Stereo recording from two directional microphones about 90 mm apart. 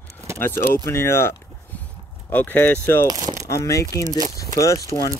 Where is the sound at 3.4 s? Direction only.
35° left (ahead or behind).